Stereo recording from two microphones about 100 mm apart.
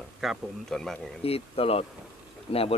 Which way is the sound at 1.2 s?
75° left (ahead or behind).